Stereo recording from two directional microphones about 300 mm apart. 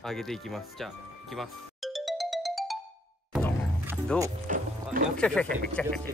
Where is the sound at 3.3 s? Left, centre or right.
Centre.